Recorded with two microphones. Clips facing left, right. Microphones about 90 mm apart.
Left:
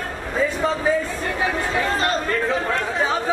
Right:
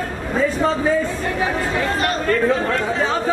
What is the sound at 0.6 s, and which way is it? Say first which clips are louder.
Speech: right 2 dB; centre (ahead or behind).